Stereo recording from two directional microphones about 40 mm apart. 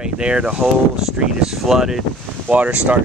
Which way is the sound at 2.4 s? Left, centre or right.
Right.